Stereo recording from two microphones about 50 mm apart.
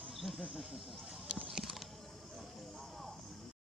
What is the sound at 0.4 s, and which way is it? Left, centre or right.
Speech, centre.